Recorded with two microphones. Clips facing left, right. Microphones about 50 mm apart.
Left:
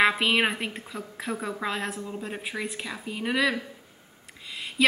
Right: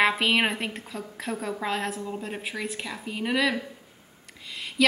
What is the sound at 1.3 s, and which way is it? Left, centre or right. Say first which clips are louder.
Speech: even; left.